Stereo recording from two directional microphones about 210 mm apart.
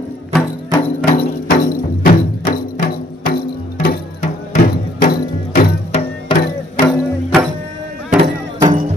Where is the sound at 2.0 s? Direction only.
40° left (ahead or behind).